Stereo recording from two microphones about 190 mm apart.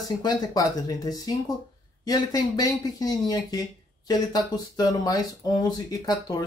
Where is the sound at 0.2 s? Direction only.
20° left (ahead or behind).